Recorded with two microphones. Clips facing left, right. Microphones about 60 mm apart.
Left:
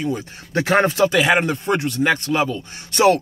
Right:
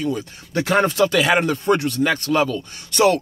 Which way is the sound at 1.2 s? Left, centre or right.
Centre.